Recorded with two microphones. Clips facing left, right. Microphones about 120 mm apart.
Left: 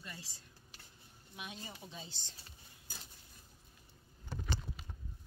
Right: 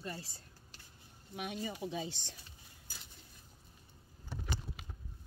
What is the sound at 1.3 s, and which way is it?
Speech, 65° right (ahead or behind).